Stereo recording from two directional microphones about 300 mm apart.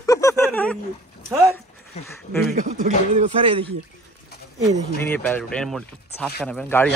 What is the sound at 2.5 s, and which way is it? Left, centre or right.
Speech, right.